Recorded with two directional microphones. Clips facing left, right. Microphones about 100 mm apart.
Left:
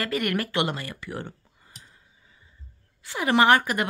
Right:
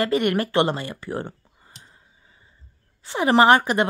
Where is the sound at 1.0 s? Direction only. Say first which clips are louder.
Right 5 dB; 35° right (ahead or behind).